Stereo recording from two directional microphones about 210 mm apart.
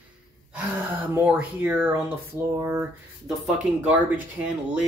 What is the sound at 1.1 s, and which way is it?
Speech, 5° right (ahead or behind).